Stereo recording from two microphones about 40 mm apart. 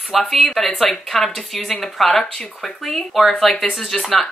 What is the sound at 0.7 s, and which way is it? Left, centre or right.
Speech, centre.